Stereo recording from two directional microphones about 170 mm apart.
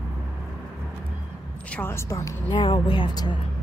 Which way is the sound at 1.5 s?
10° left (ahead or behind).